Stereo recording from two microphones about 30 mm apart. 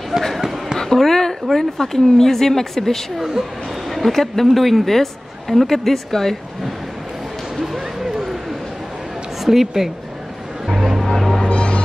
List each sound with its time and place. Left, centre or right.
0.1 s speech: centre
0.7 s a woman's voice: centre
3.2 s a woman's voice: centre
3.9 s a woman's voice: centre
7.5 s a sound: centre
9.4 s a woman's voice: centre
10.7 s music: centre
11.4 s music: left